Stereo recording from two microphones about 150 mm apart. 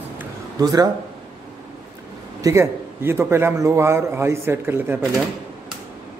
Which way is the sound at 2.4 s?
20° right (ahead or behind).